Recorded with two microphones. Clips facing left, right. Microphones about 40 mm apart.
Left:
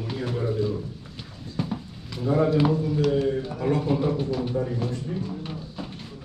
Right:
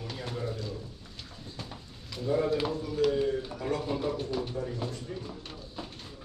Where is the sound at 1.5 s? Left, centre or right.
Left.